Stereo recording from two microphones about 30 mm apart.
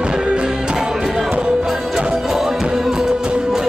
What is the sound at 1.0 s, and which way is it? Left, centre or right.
Music, centre.